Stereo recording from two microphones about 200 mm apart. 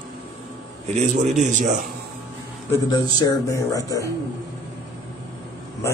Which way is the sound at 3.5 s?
15° left (ahead or behind).